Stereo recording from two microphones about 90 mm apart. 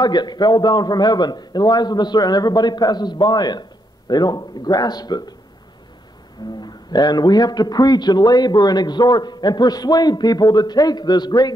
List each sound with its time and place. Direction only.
0.0 s a man's voice: 50° left (ahead or behind)
6.6 s a man's voice: 50° left (ahead or behind)